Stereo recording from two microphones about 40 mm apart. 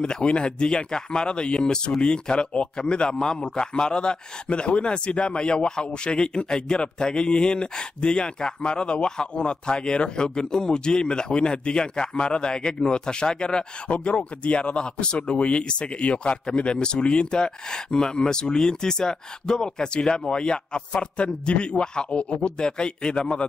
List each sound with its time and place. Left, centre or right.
0.0 s speech: centre